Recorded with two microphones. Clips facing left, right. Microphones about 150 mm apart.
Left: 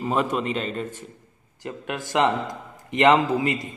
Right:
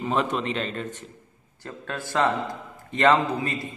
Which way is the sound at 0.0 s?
5° left (ahead or behind).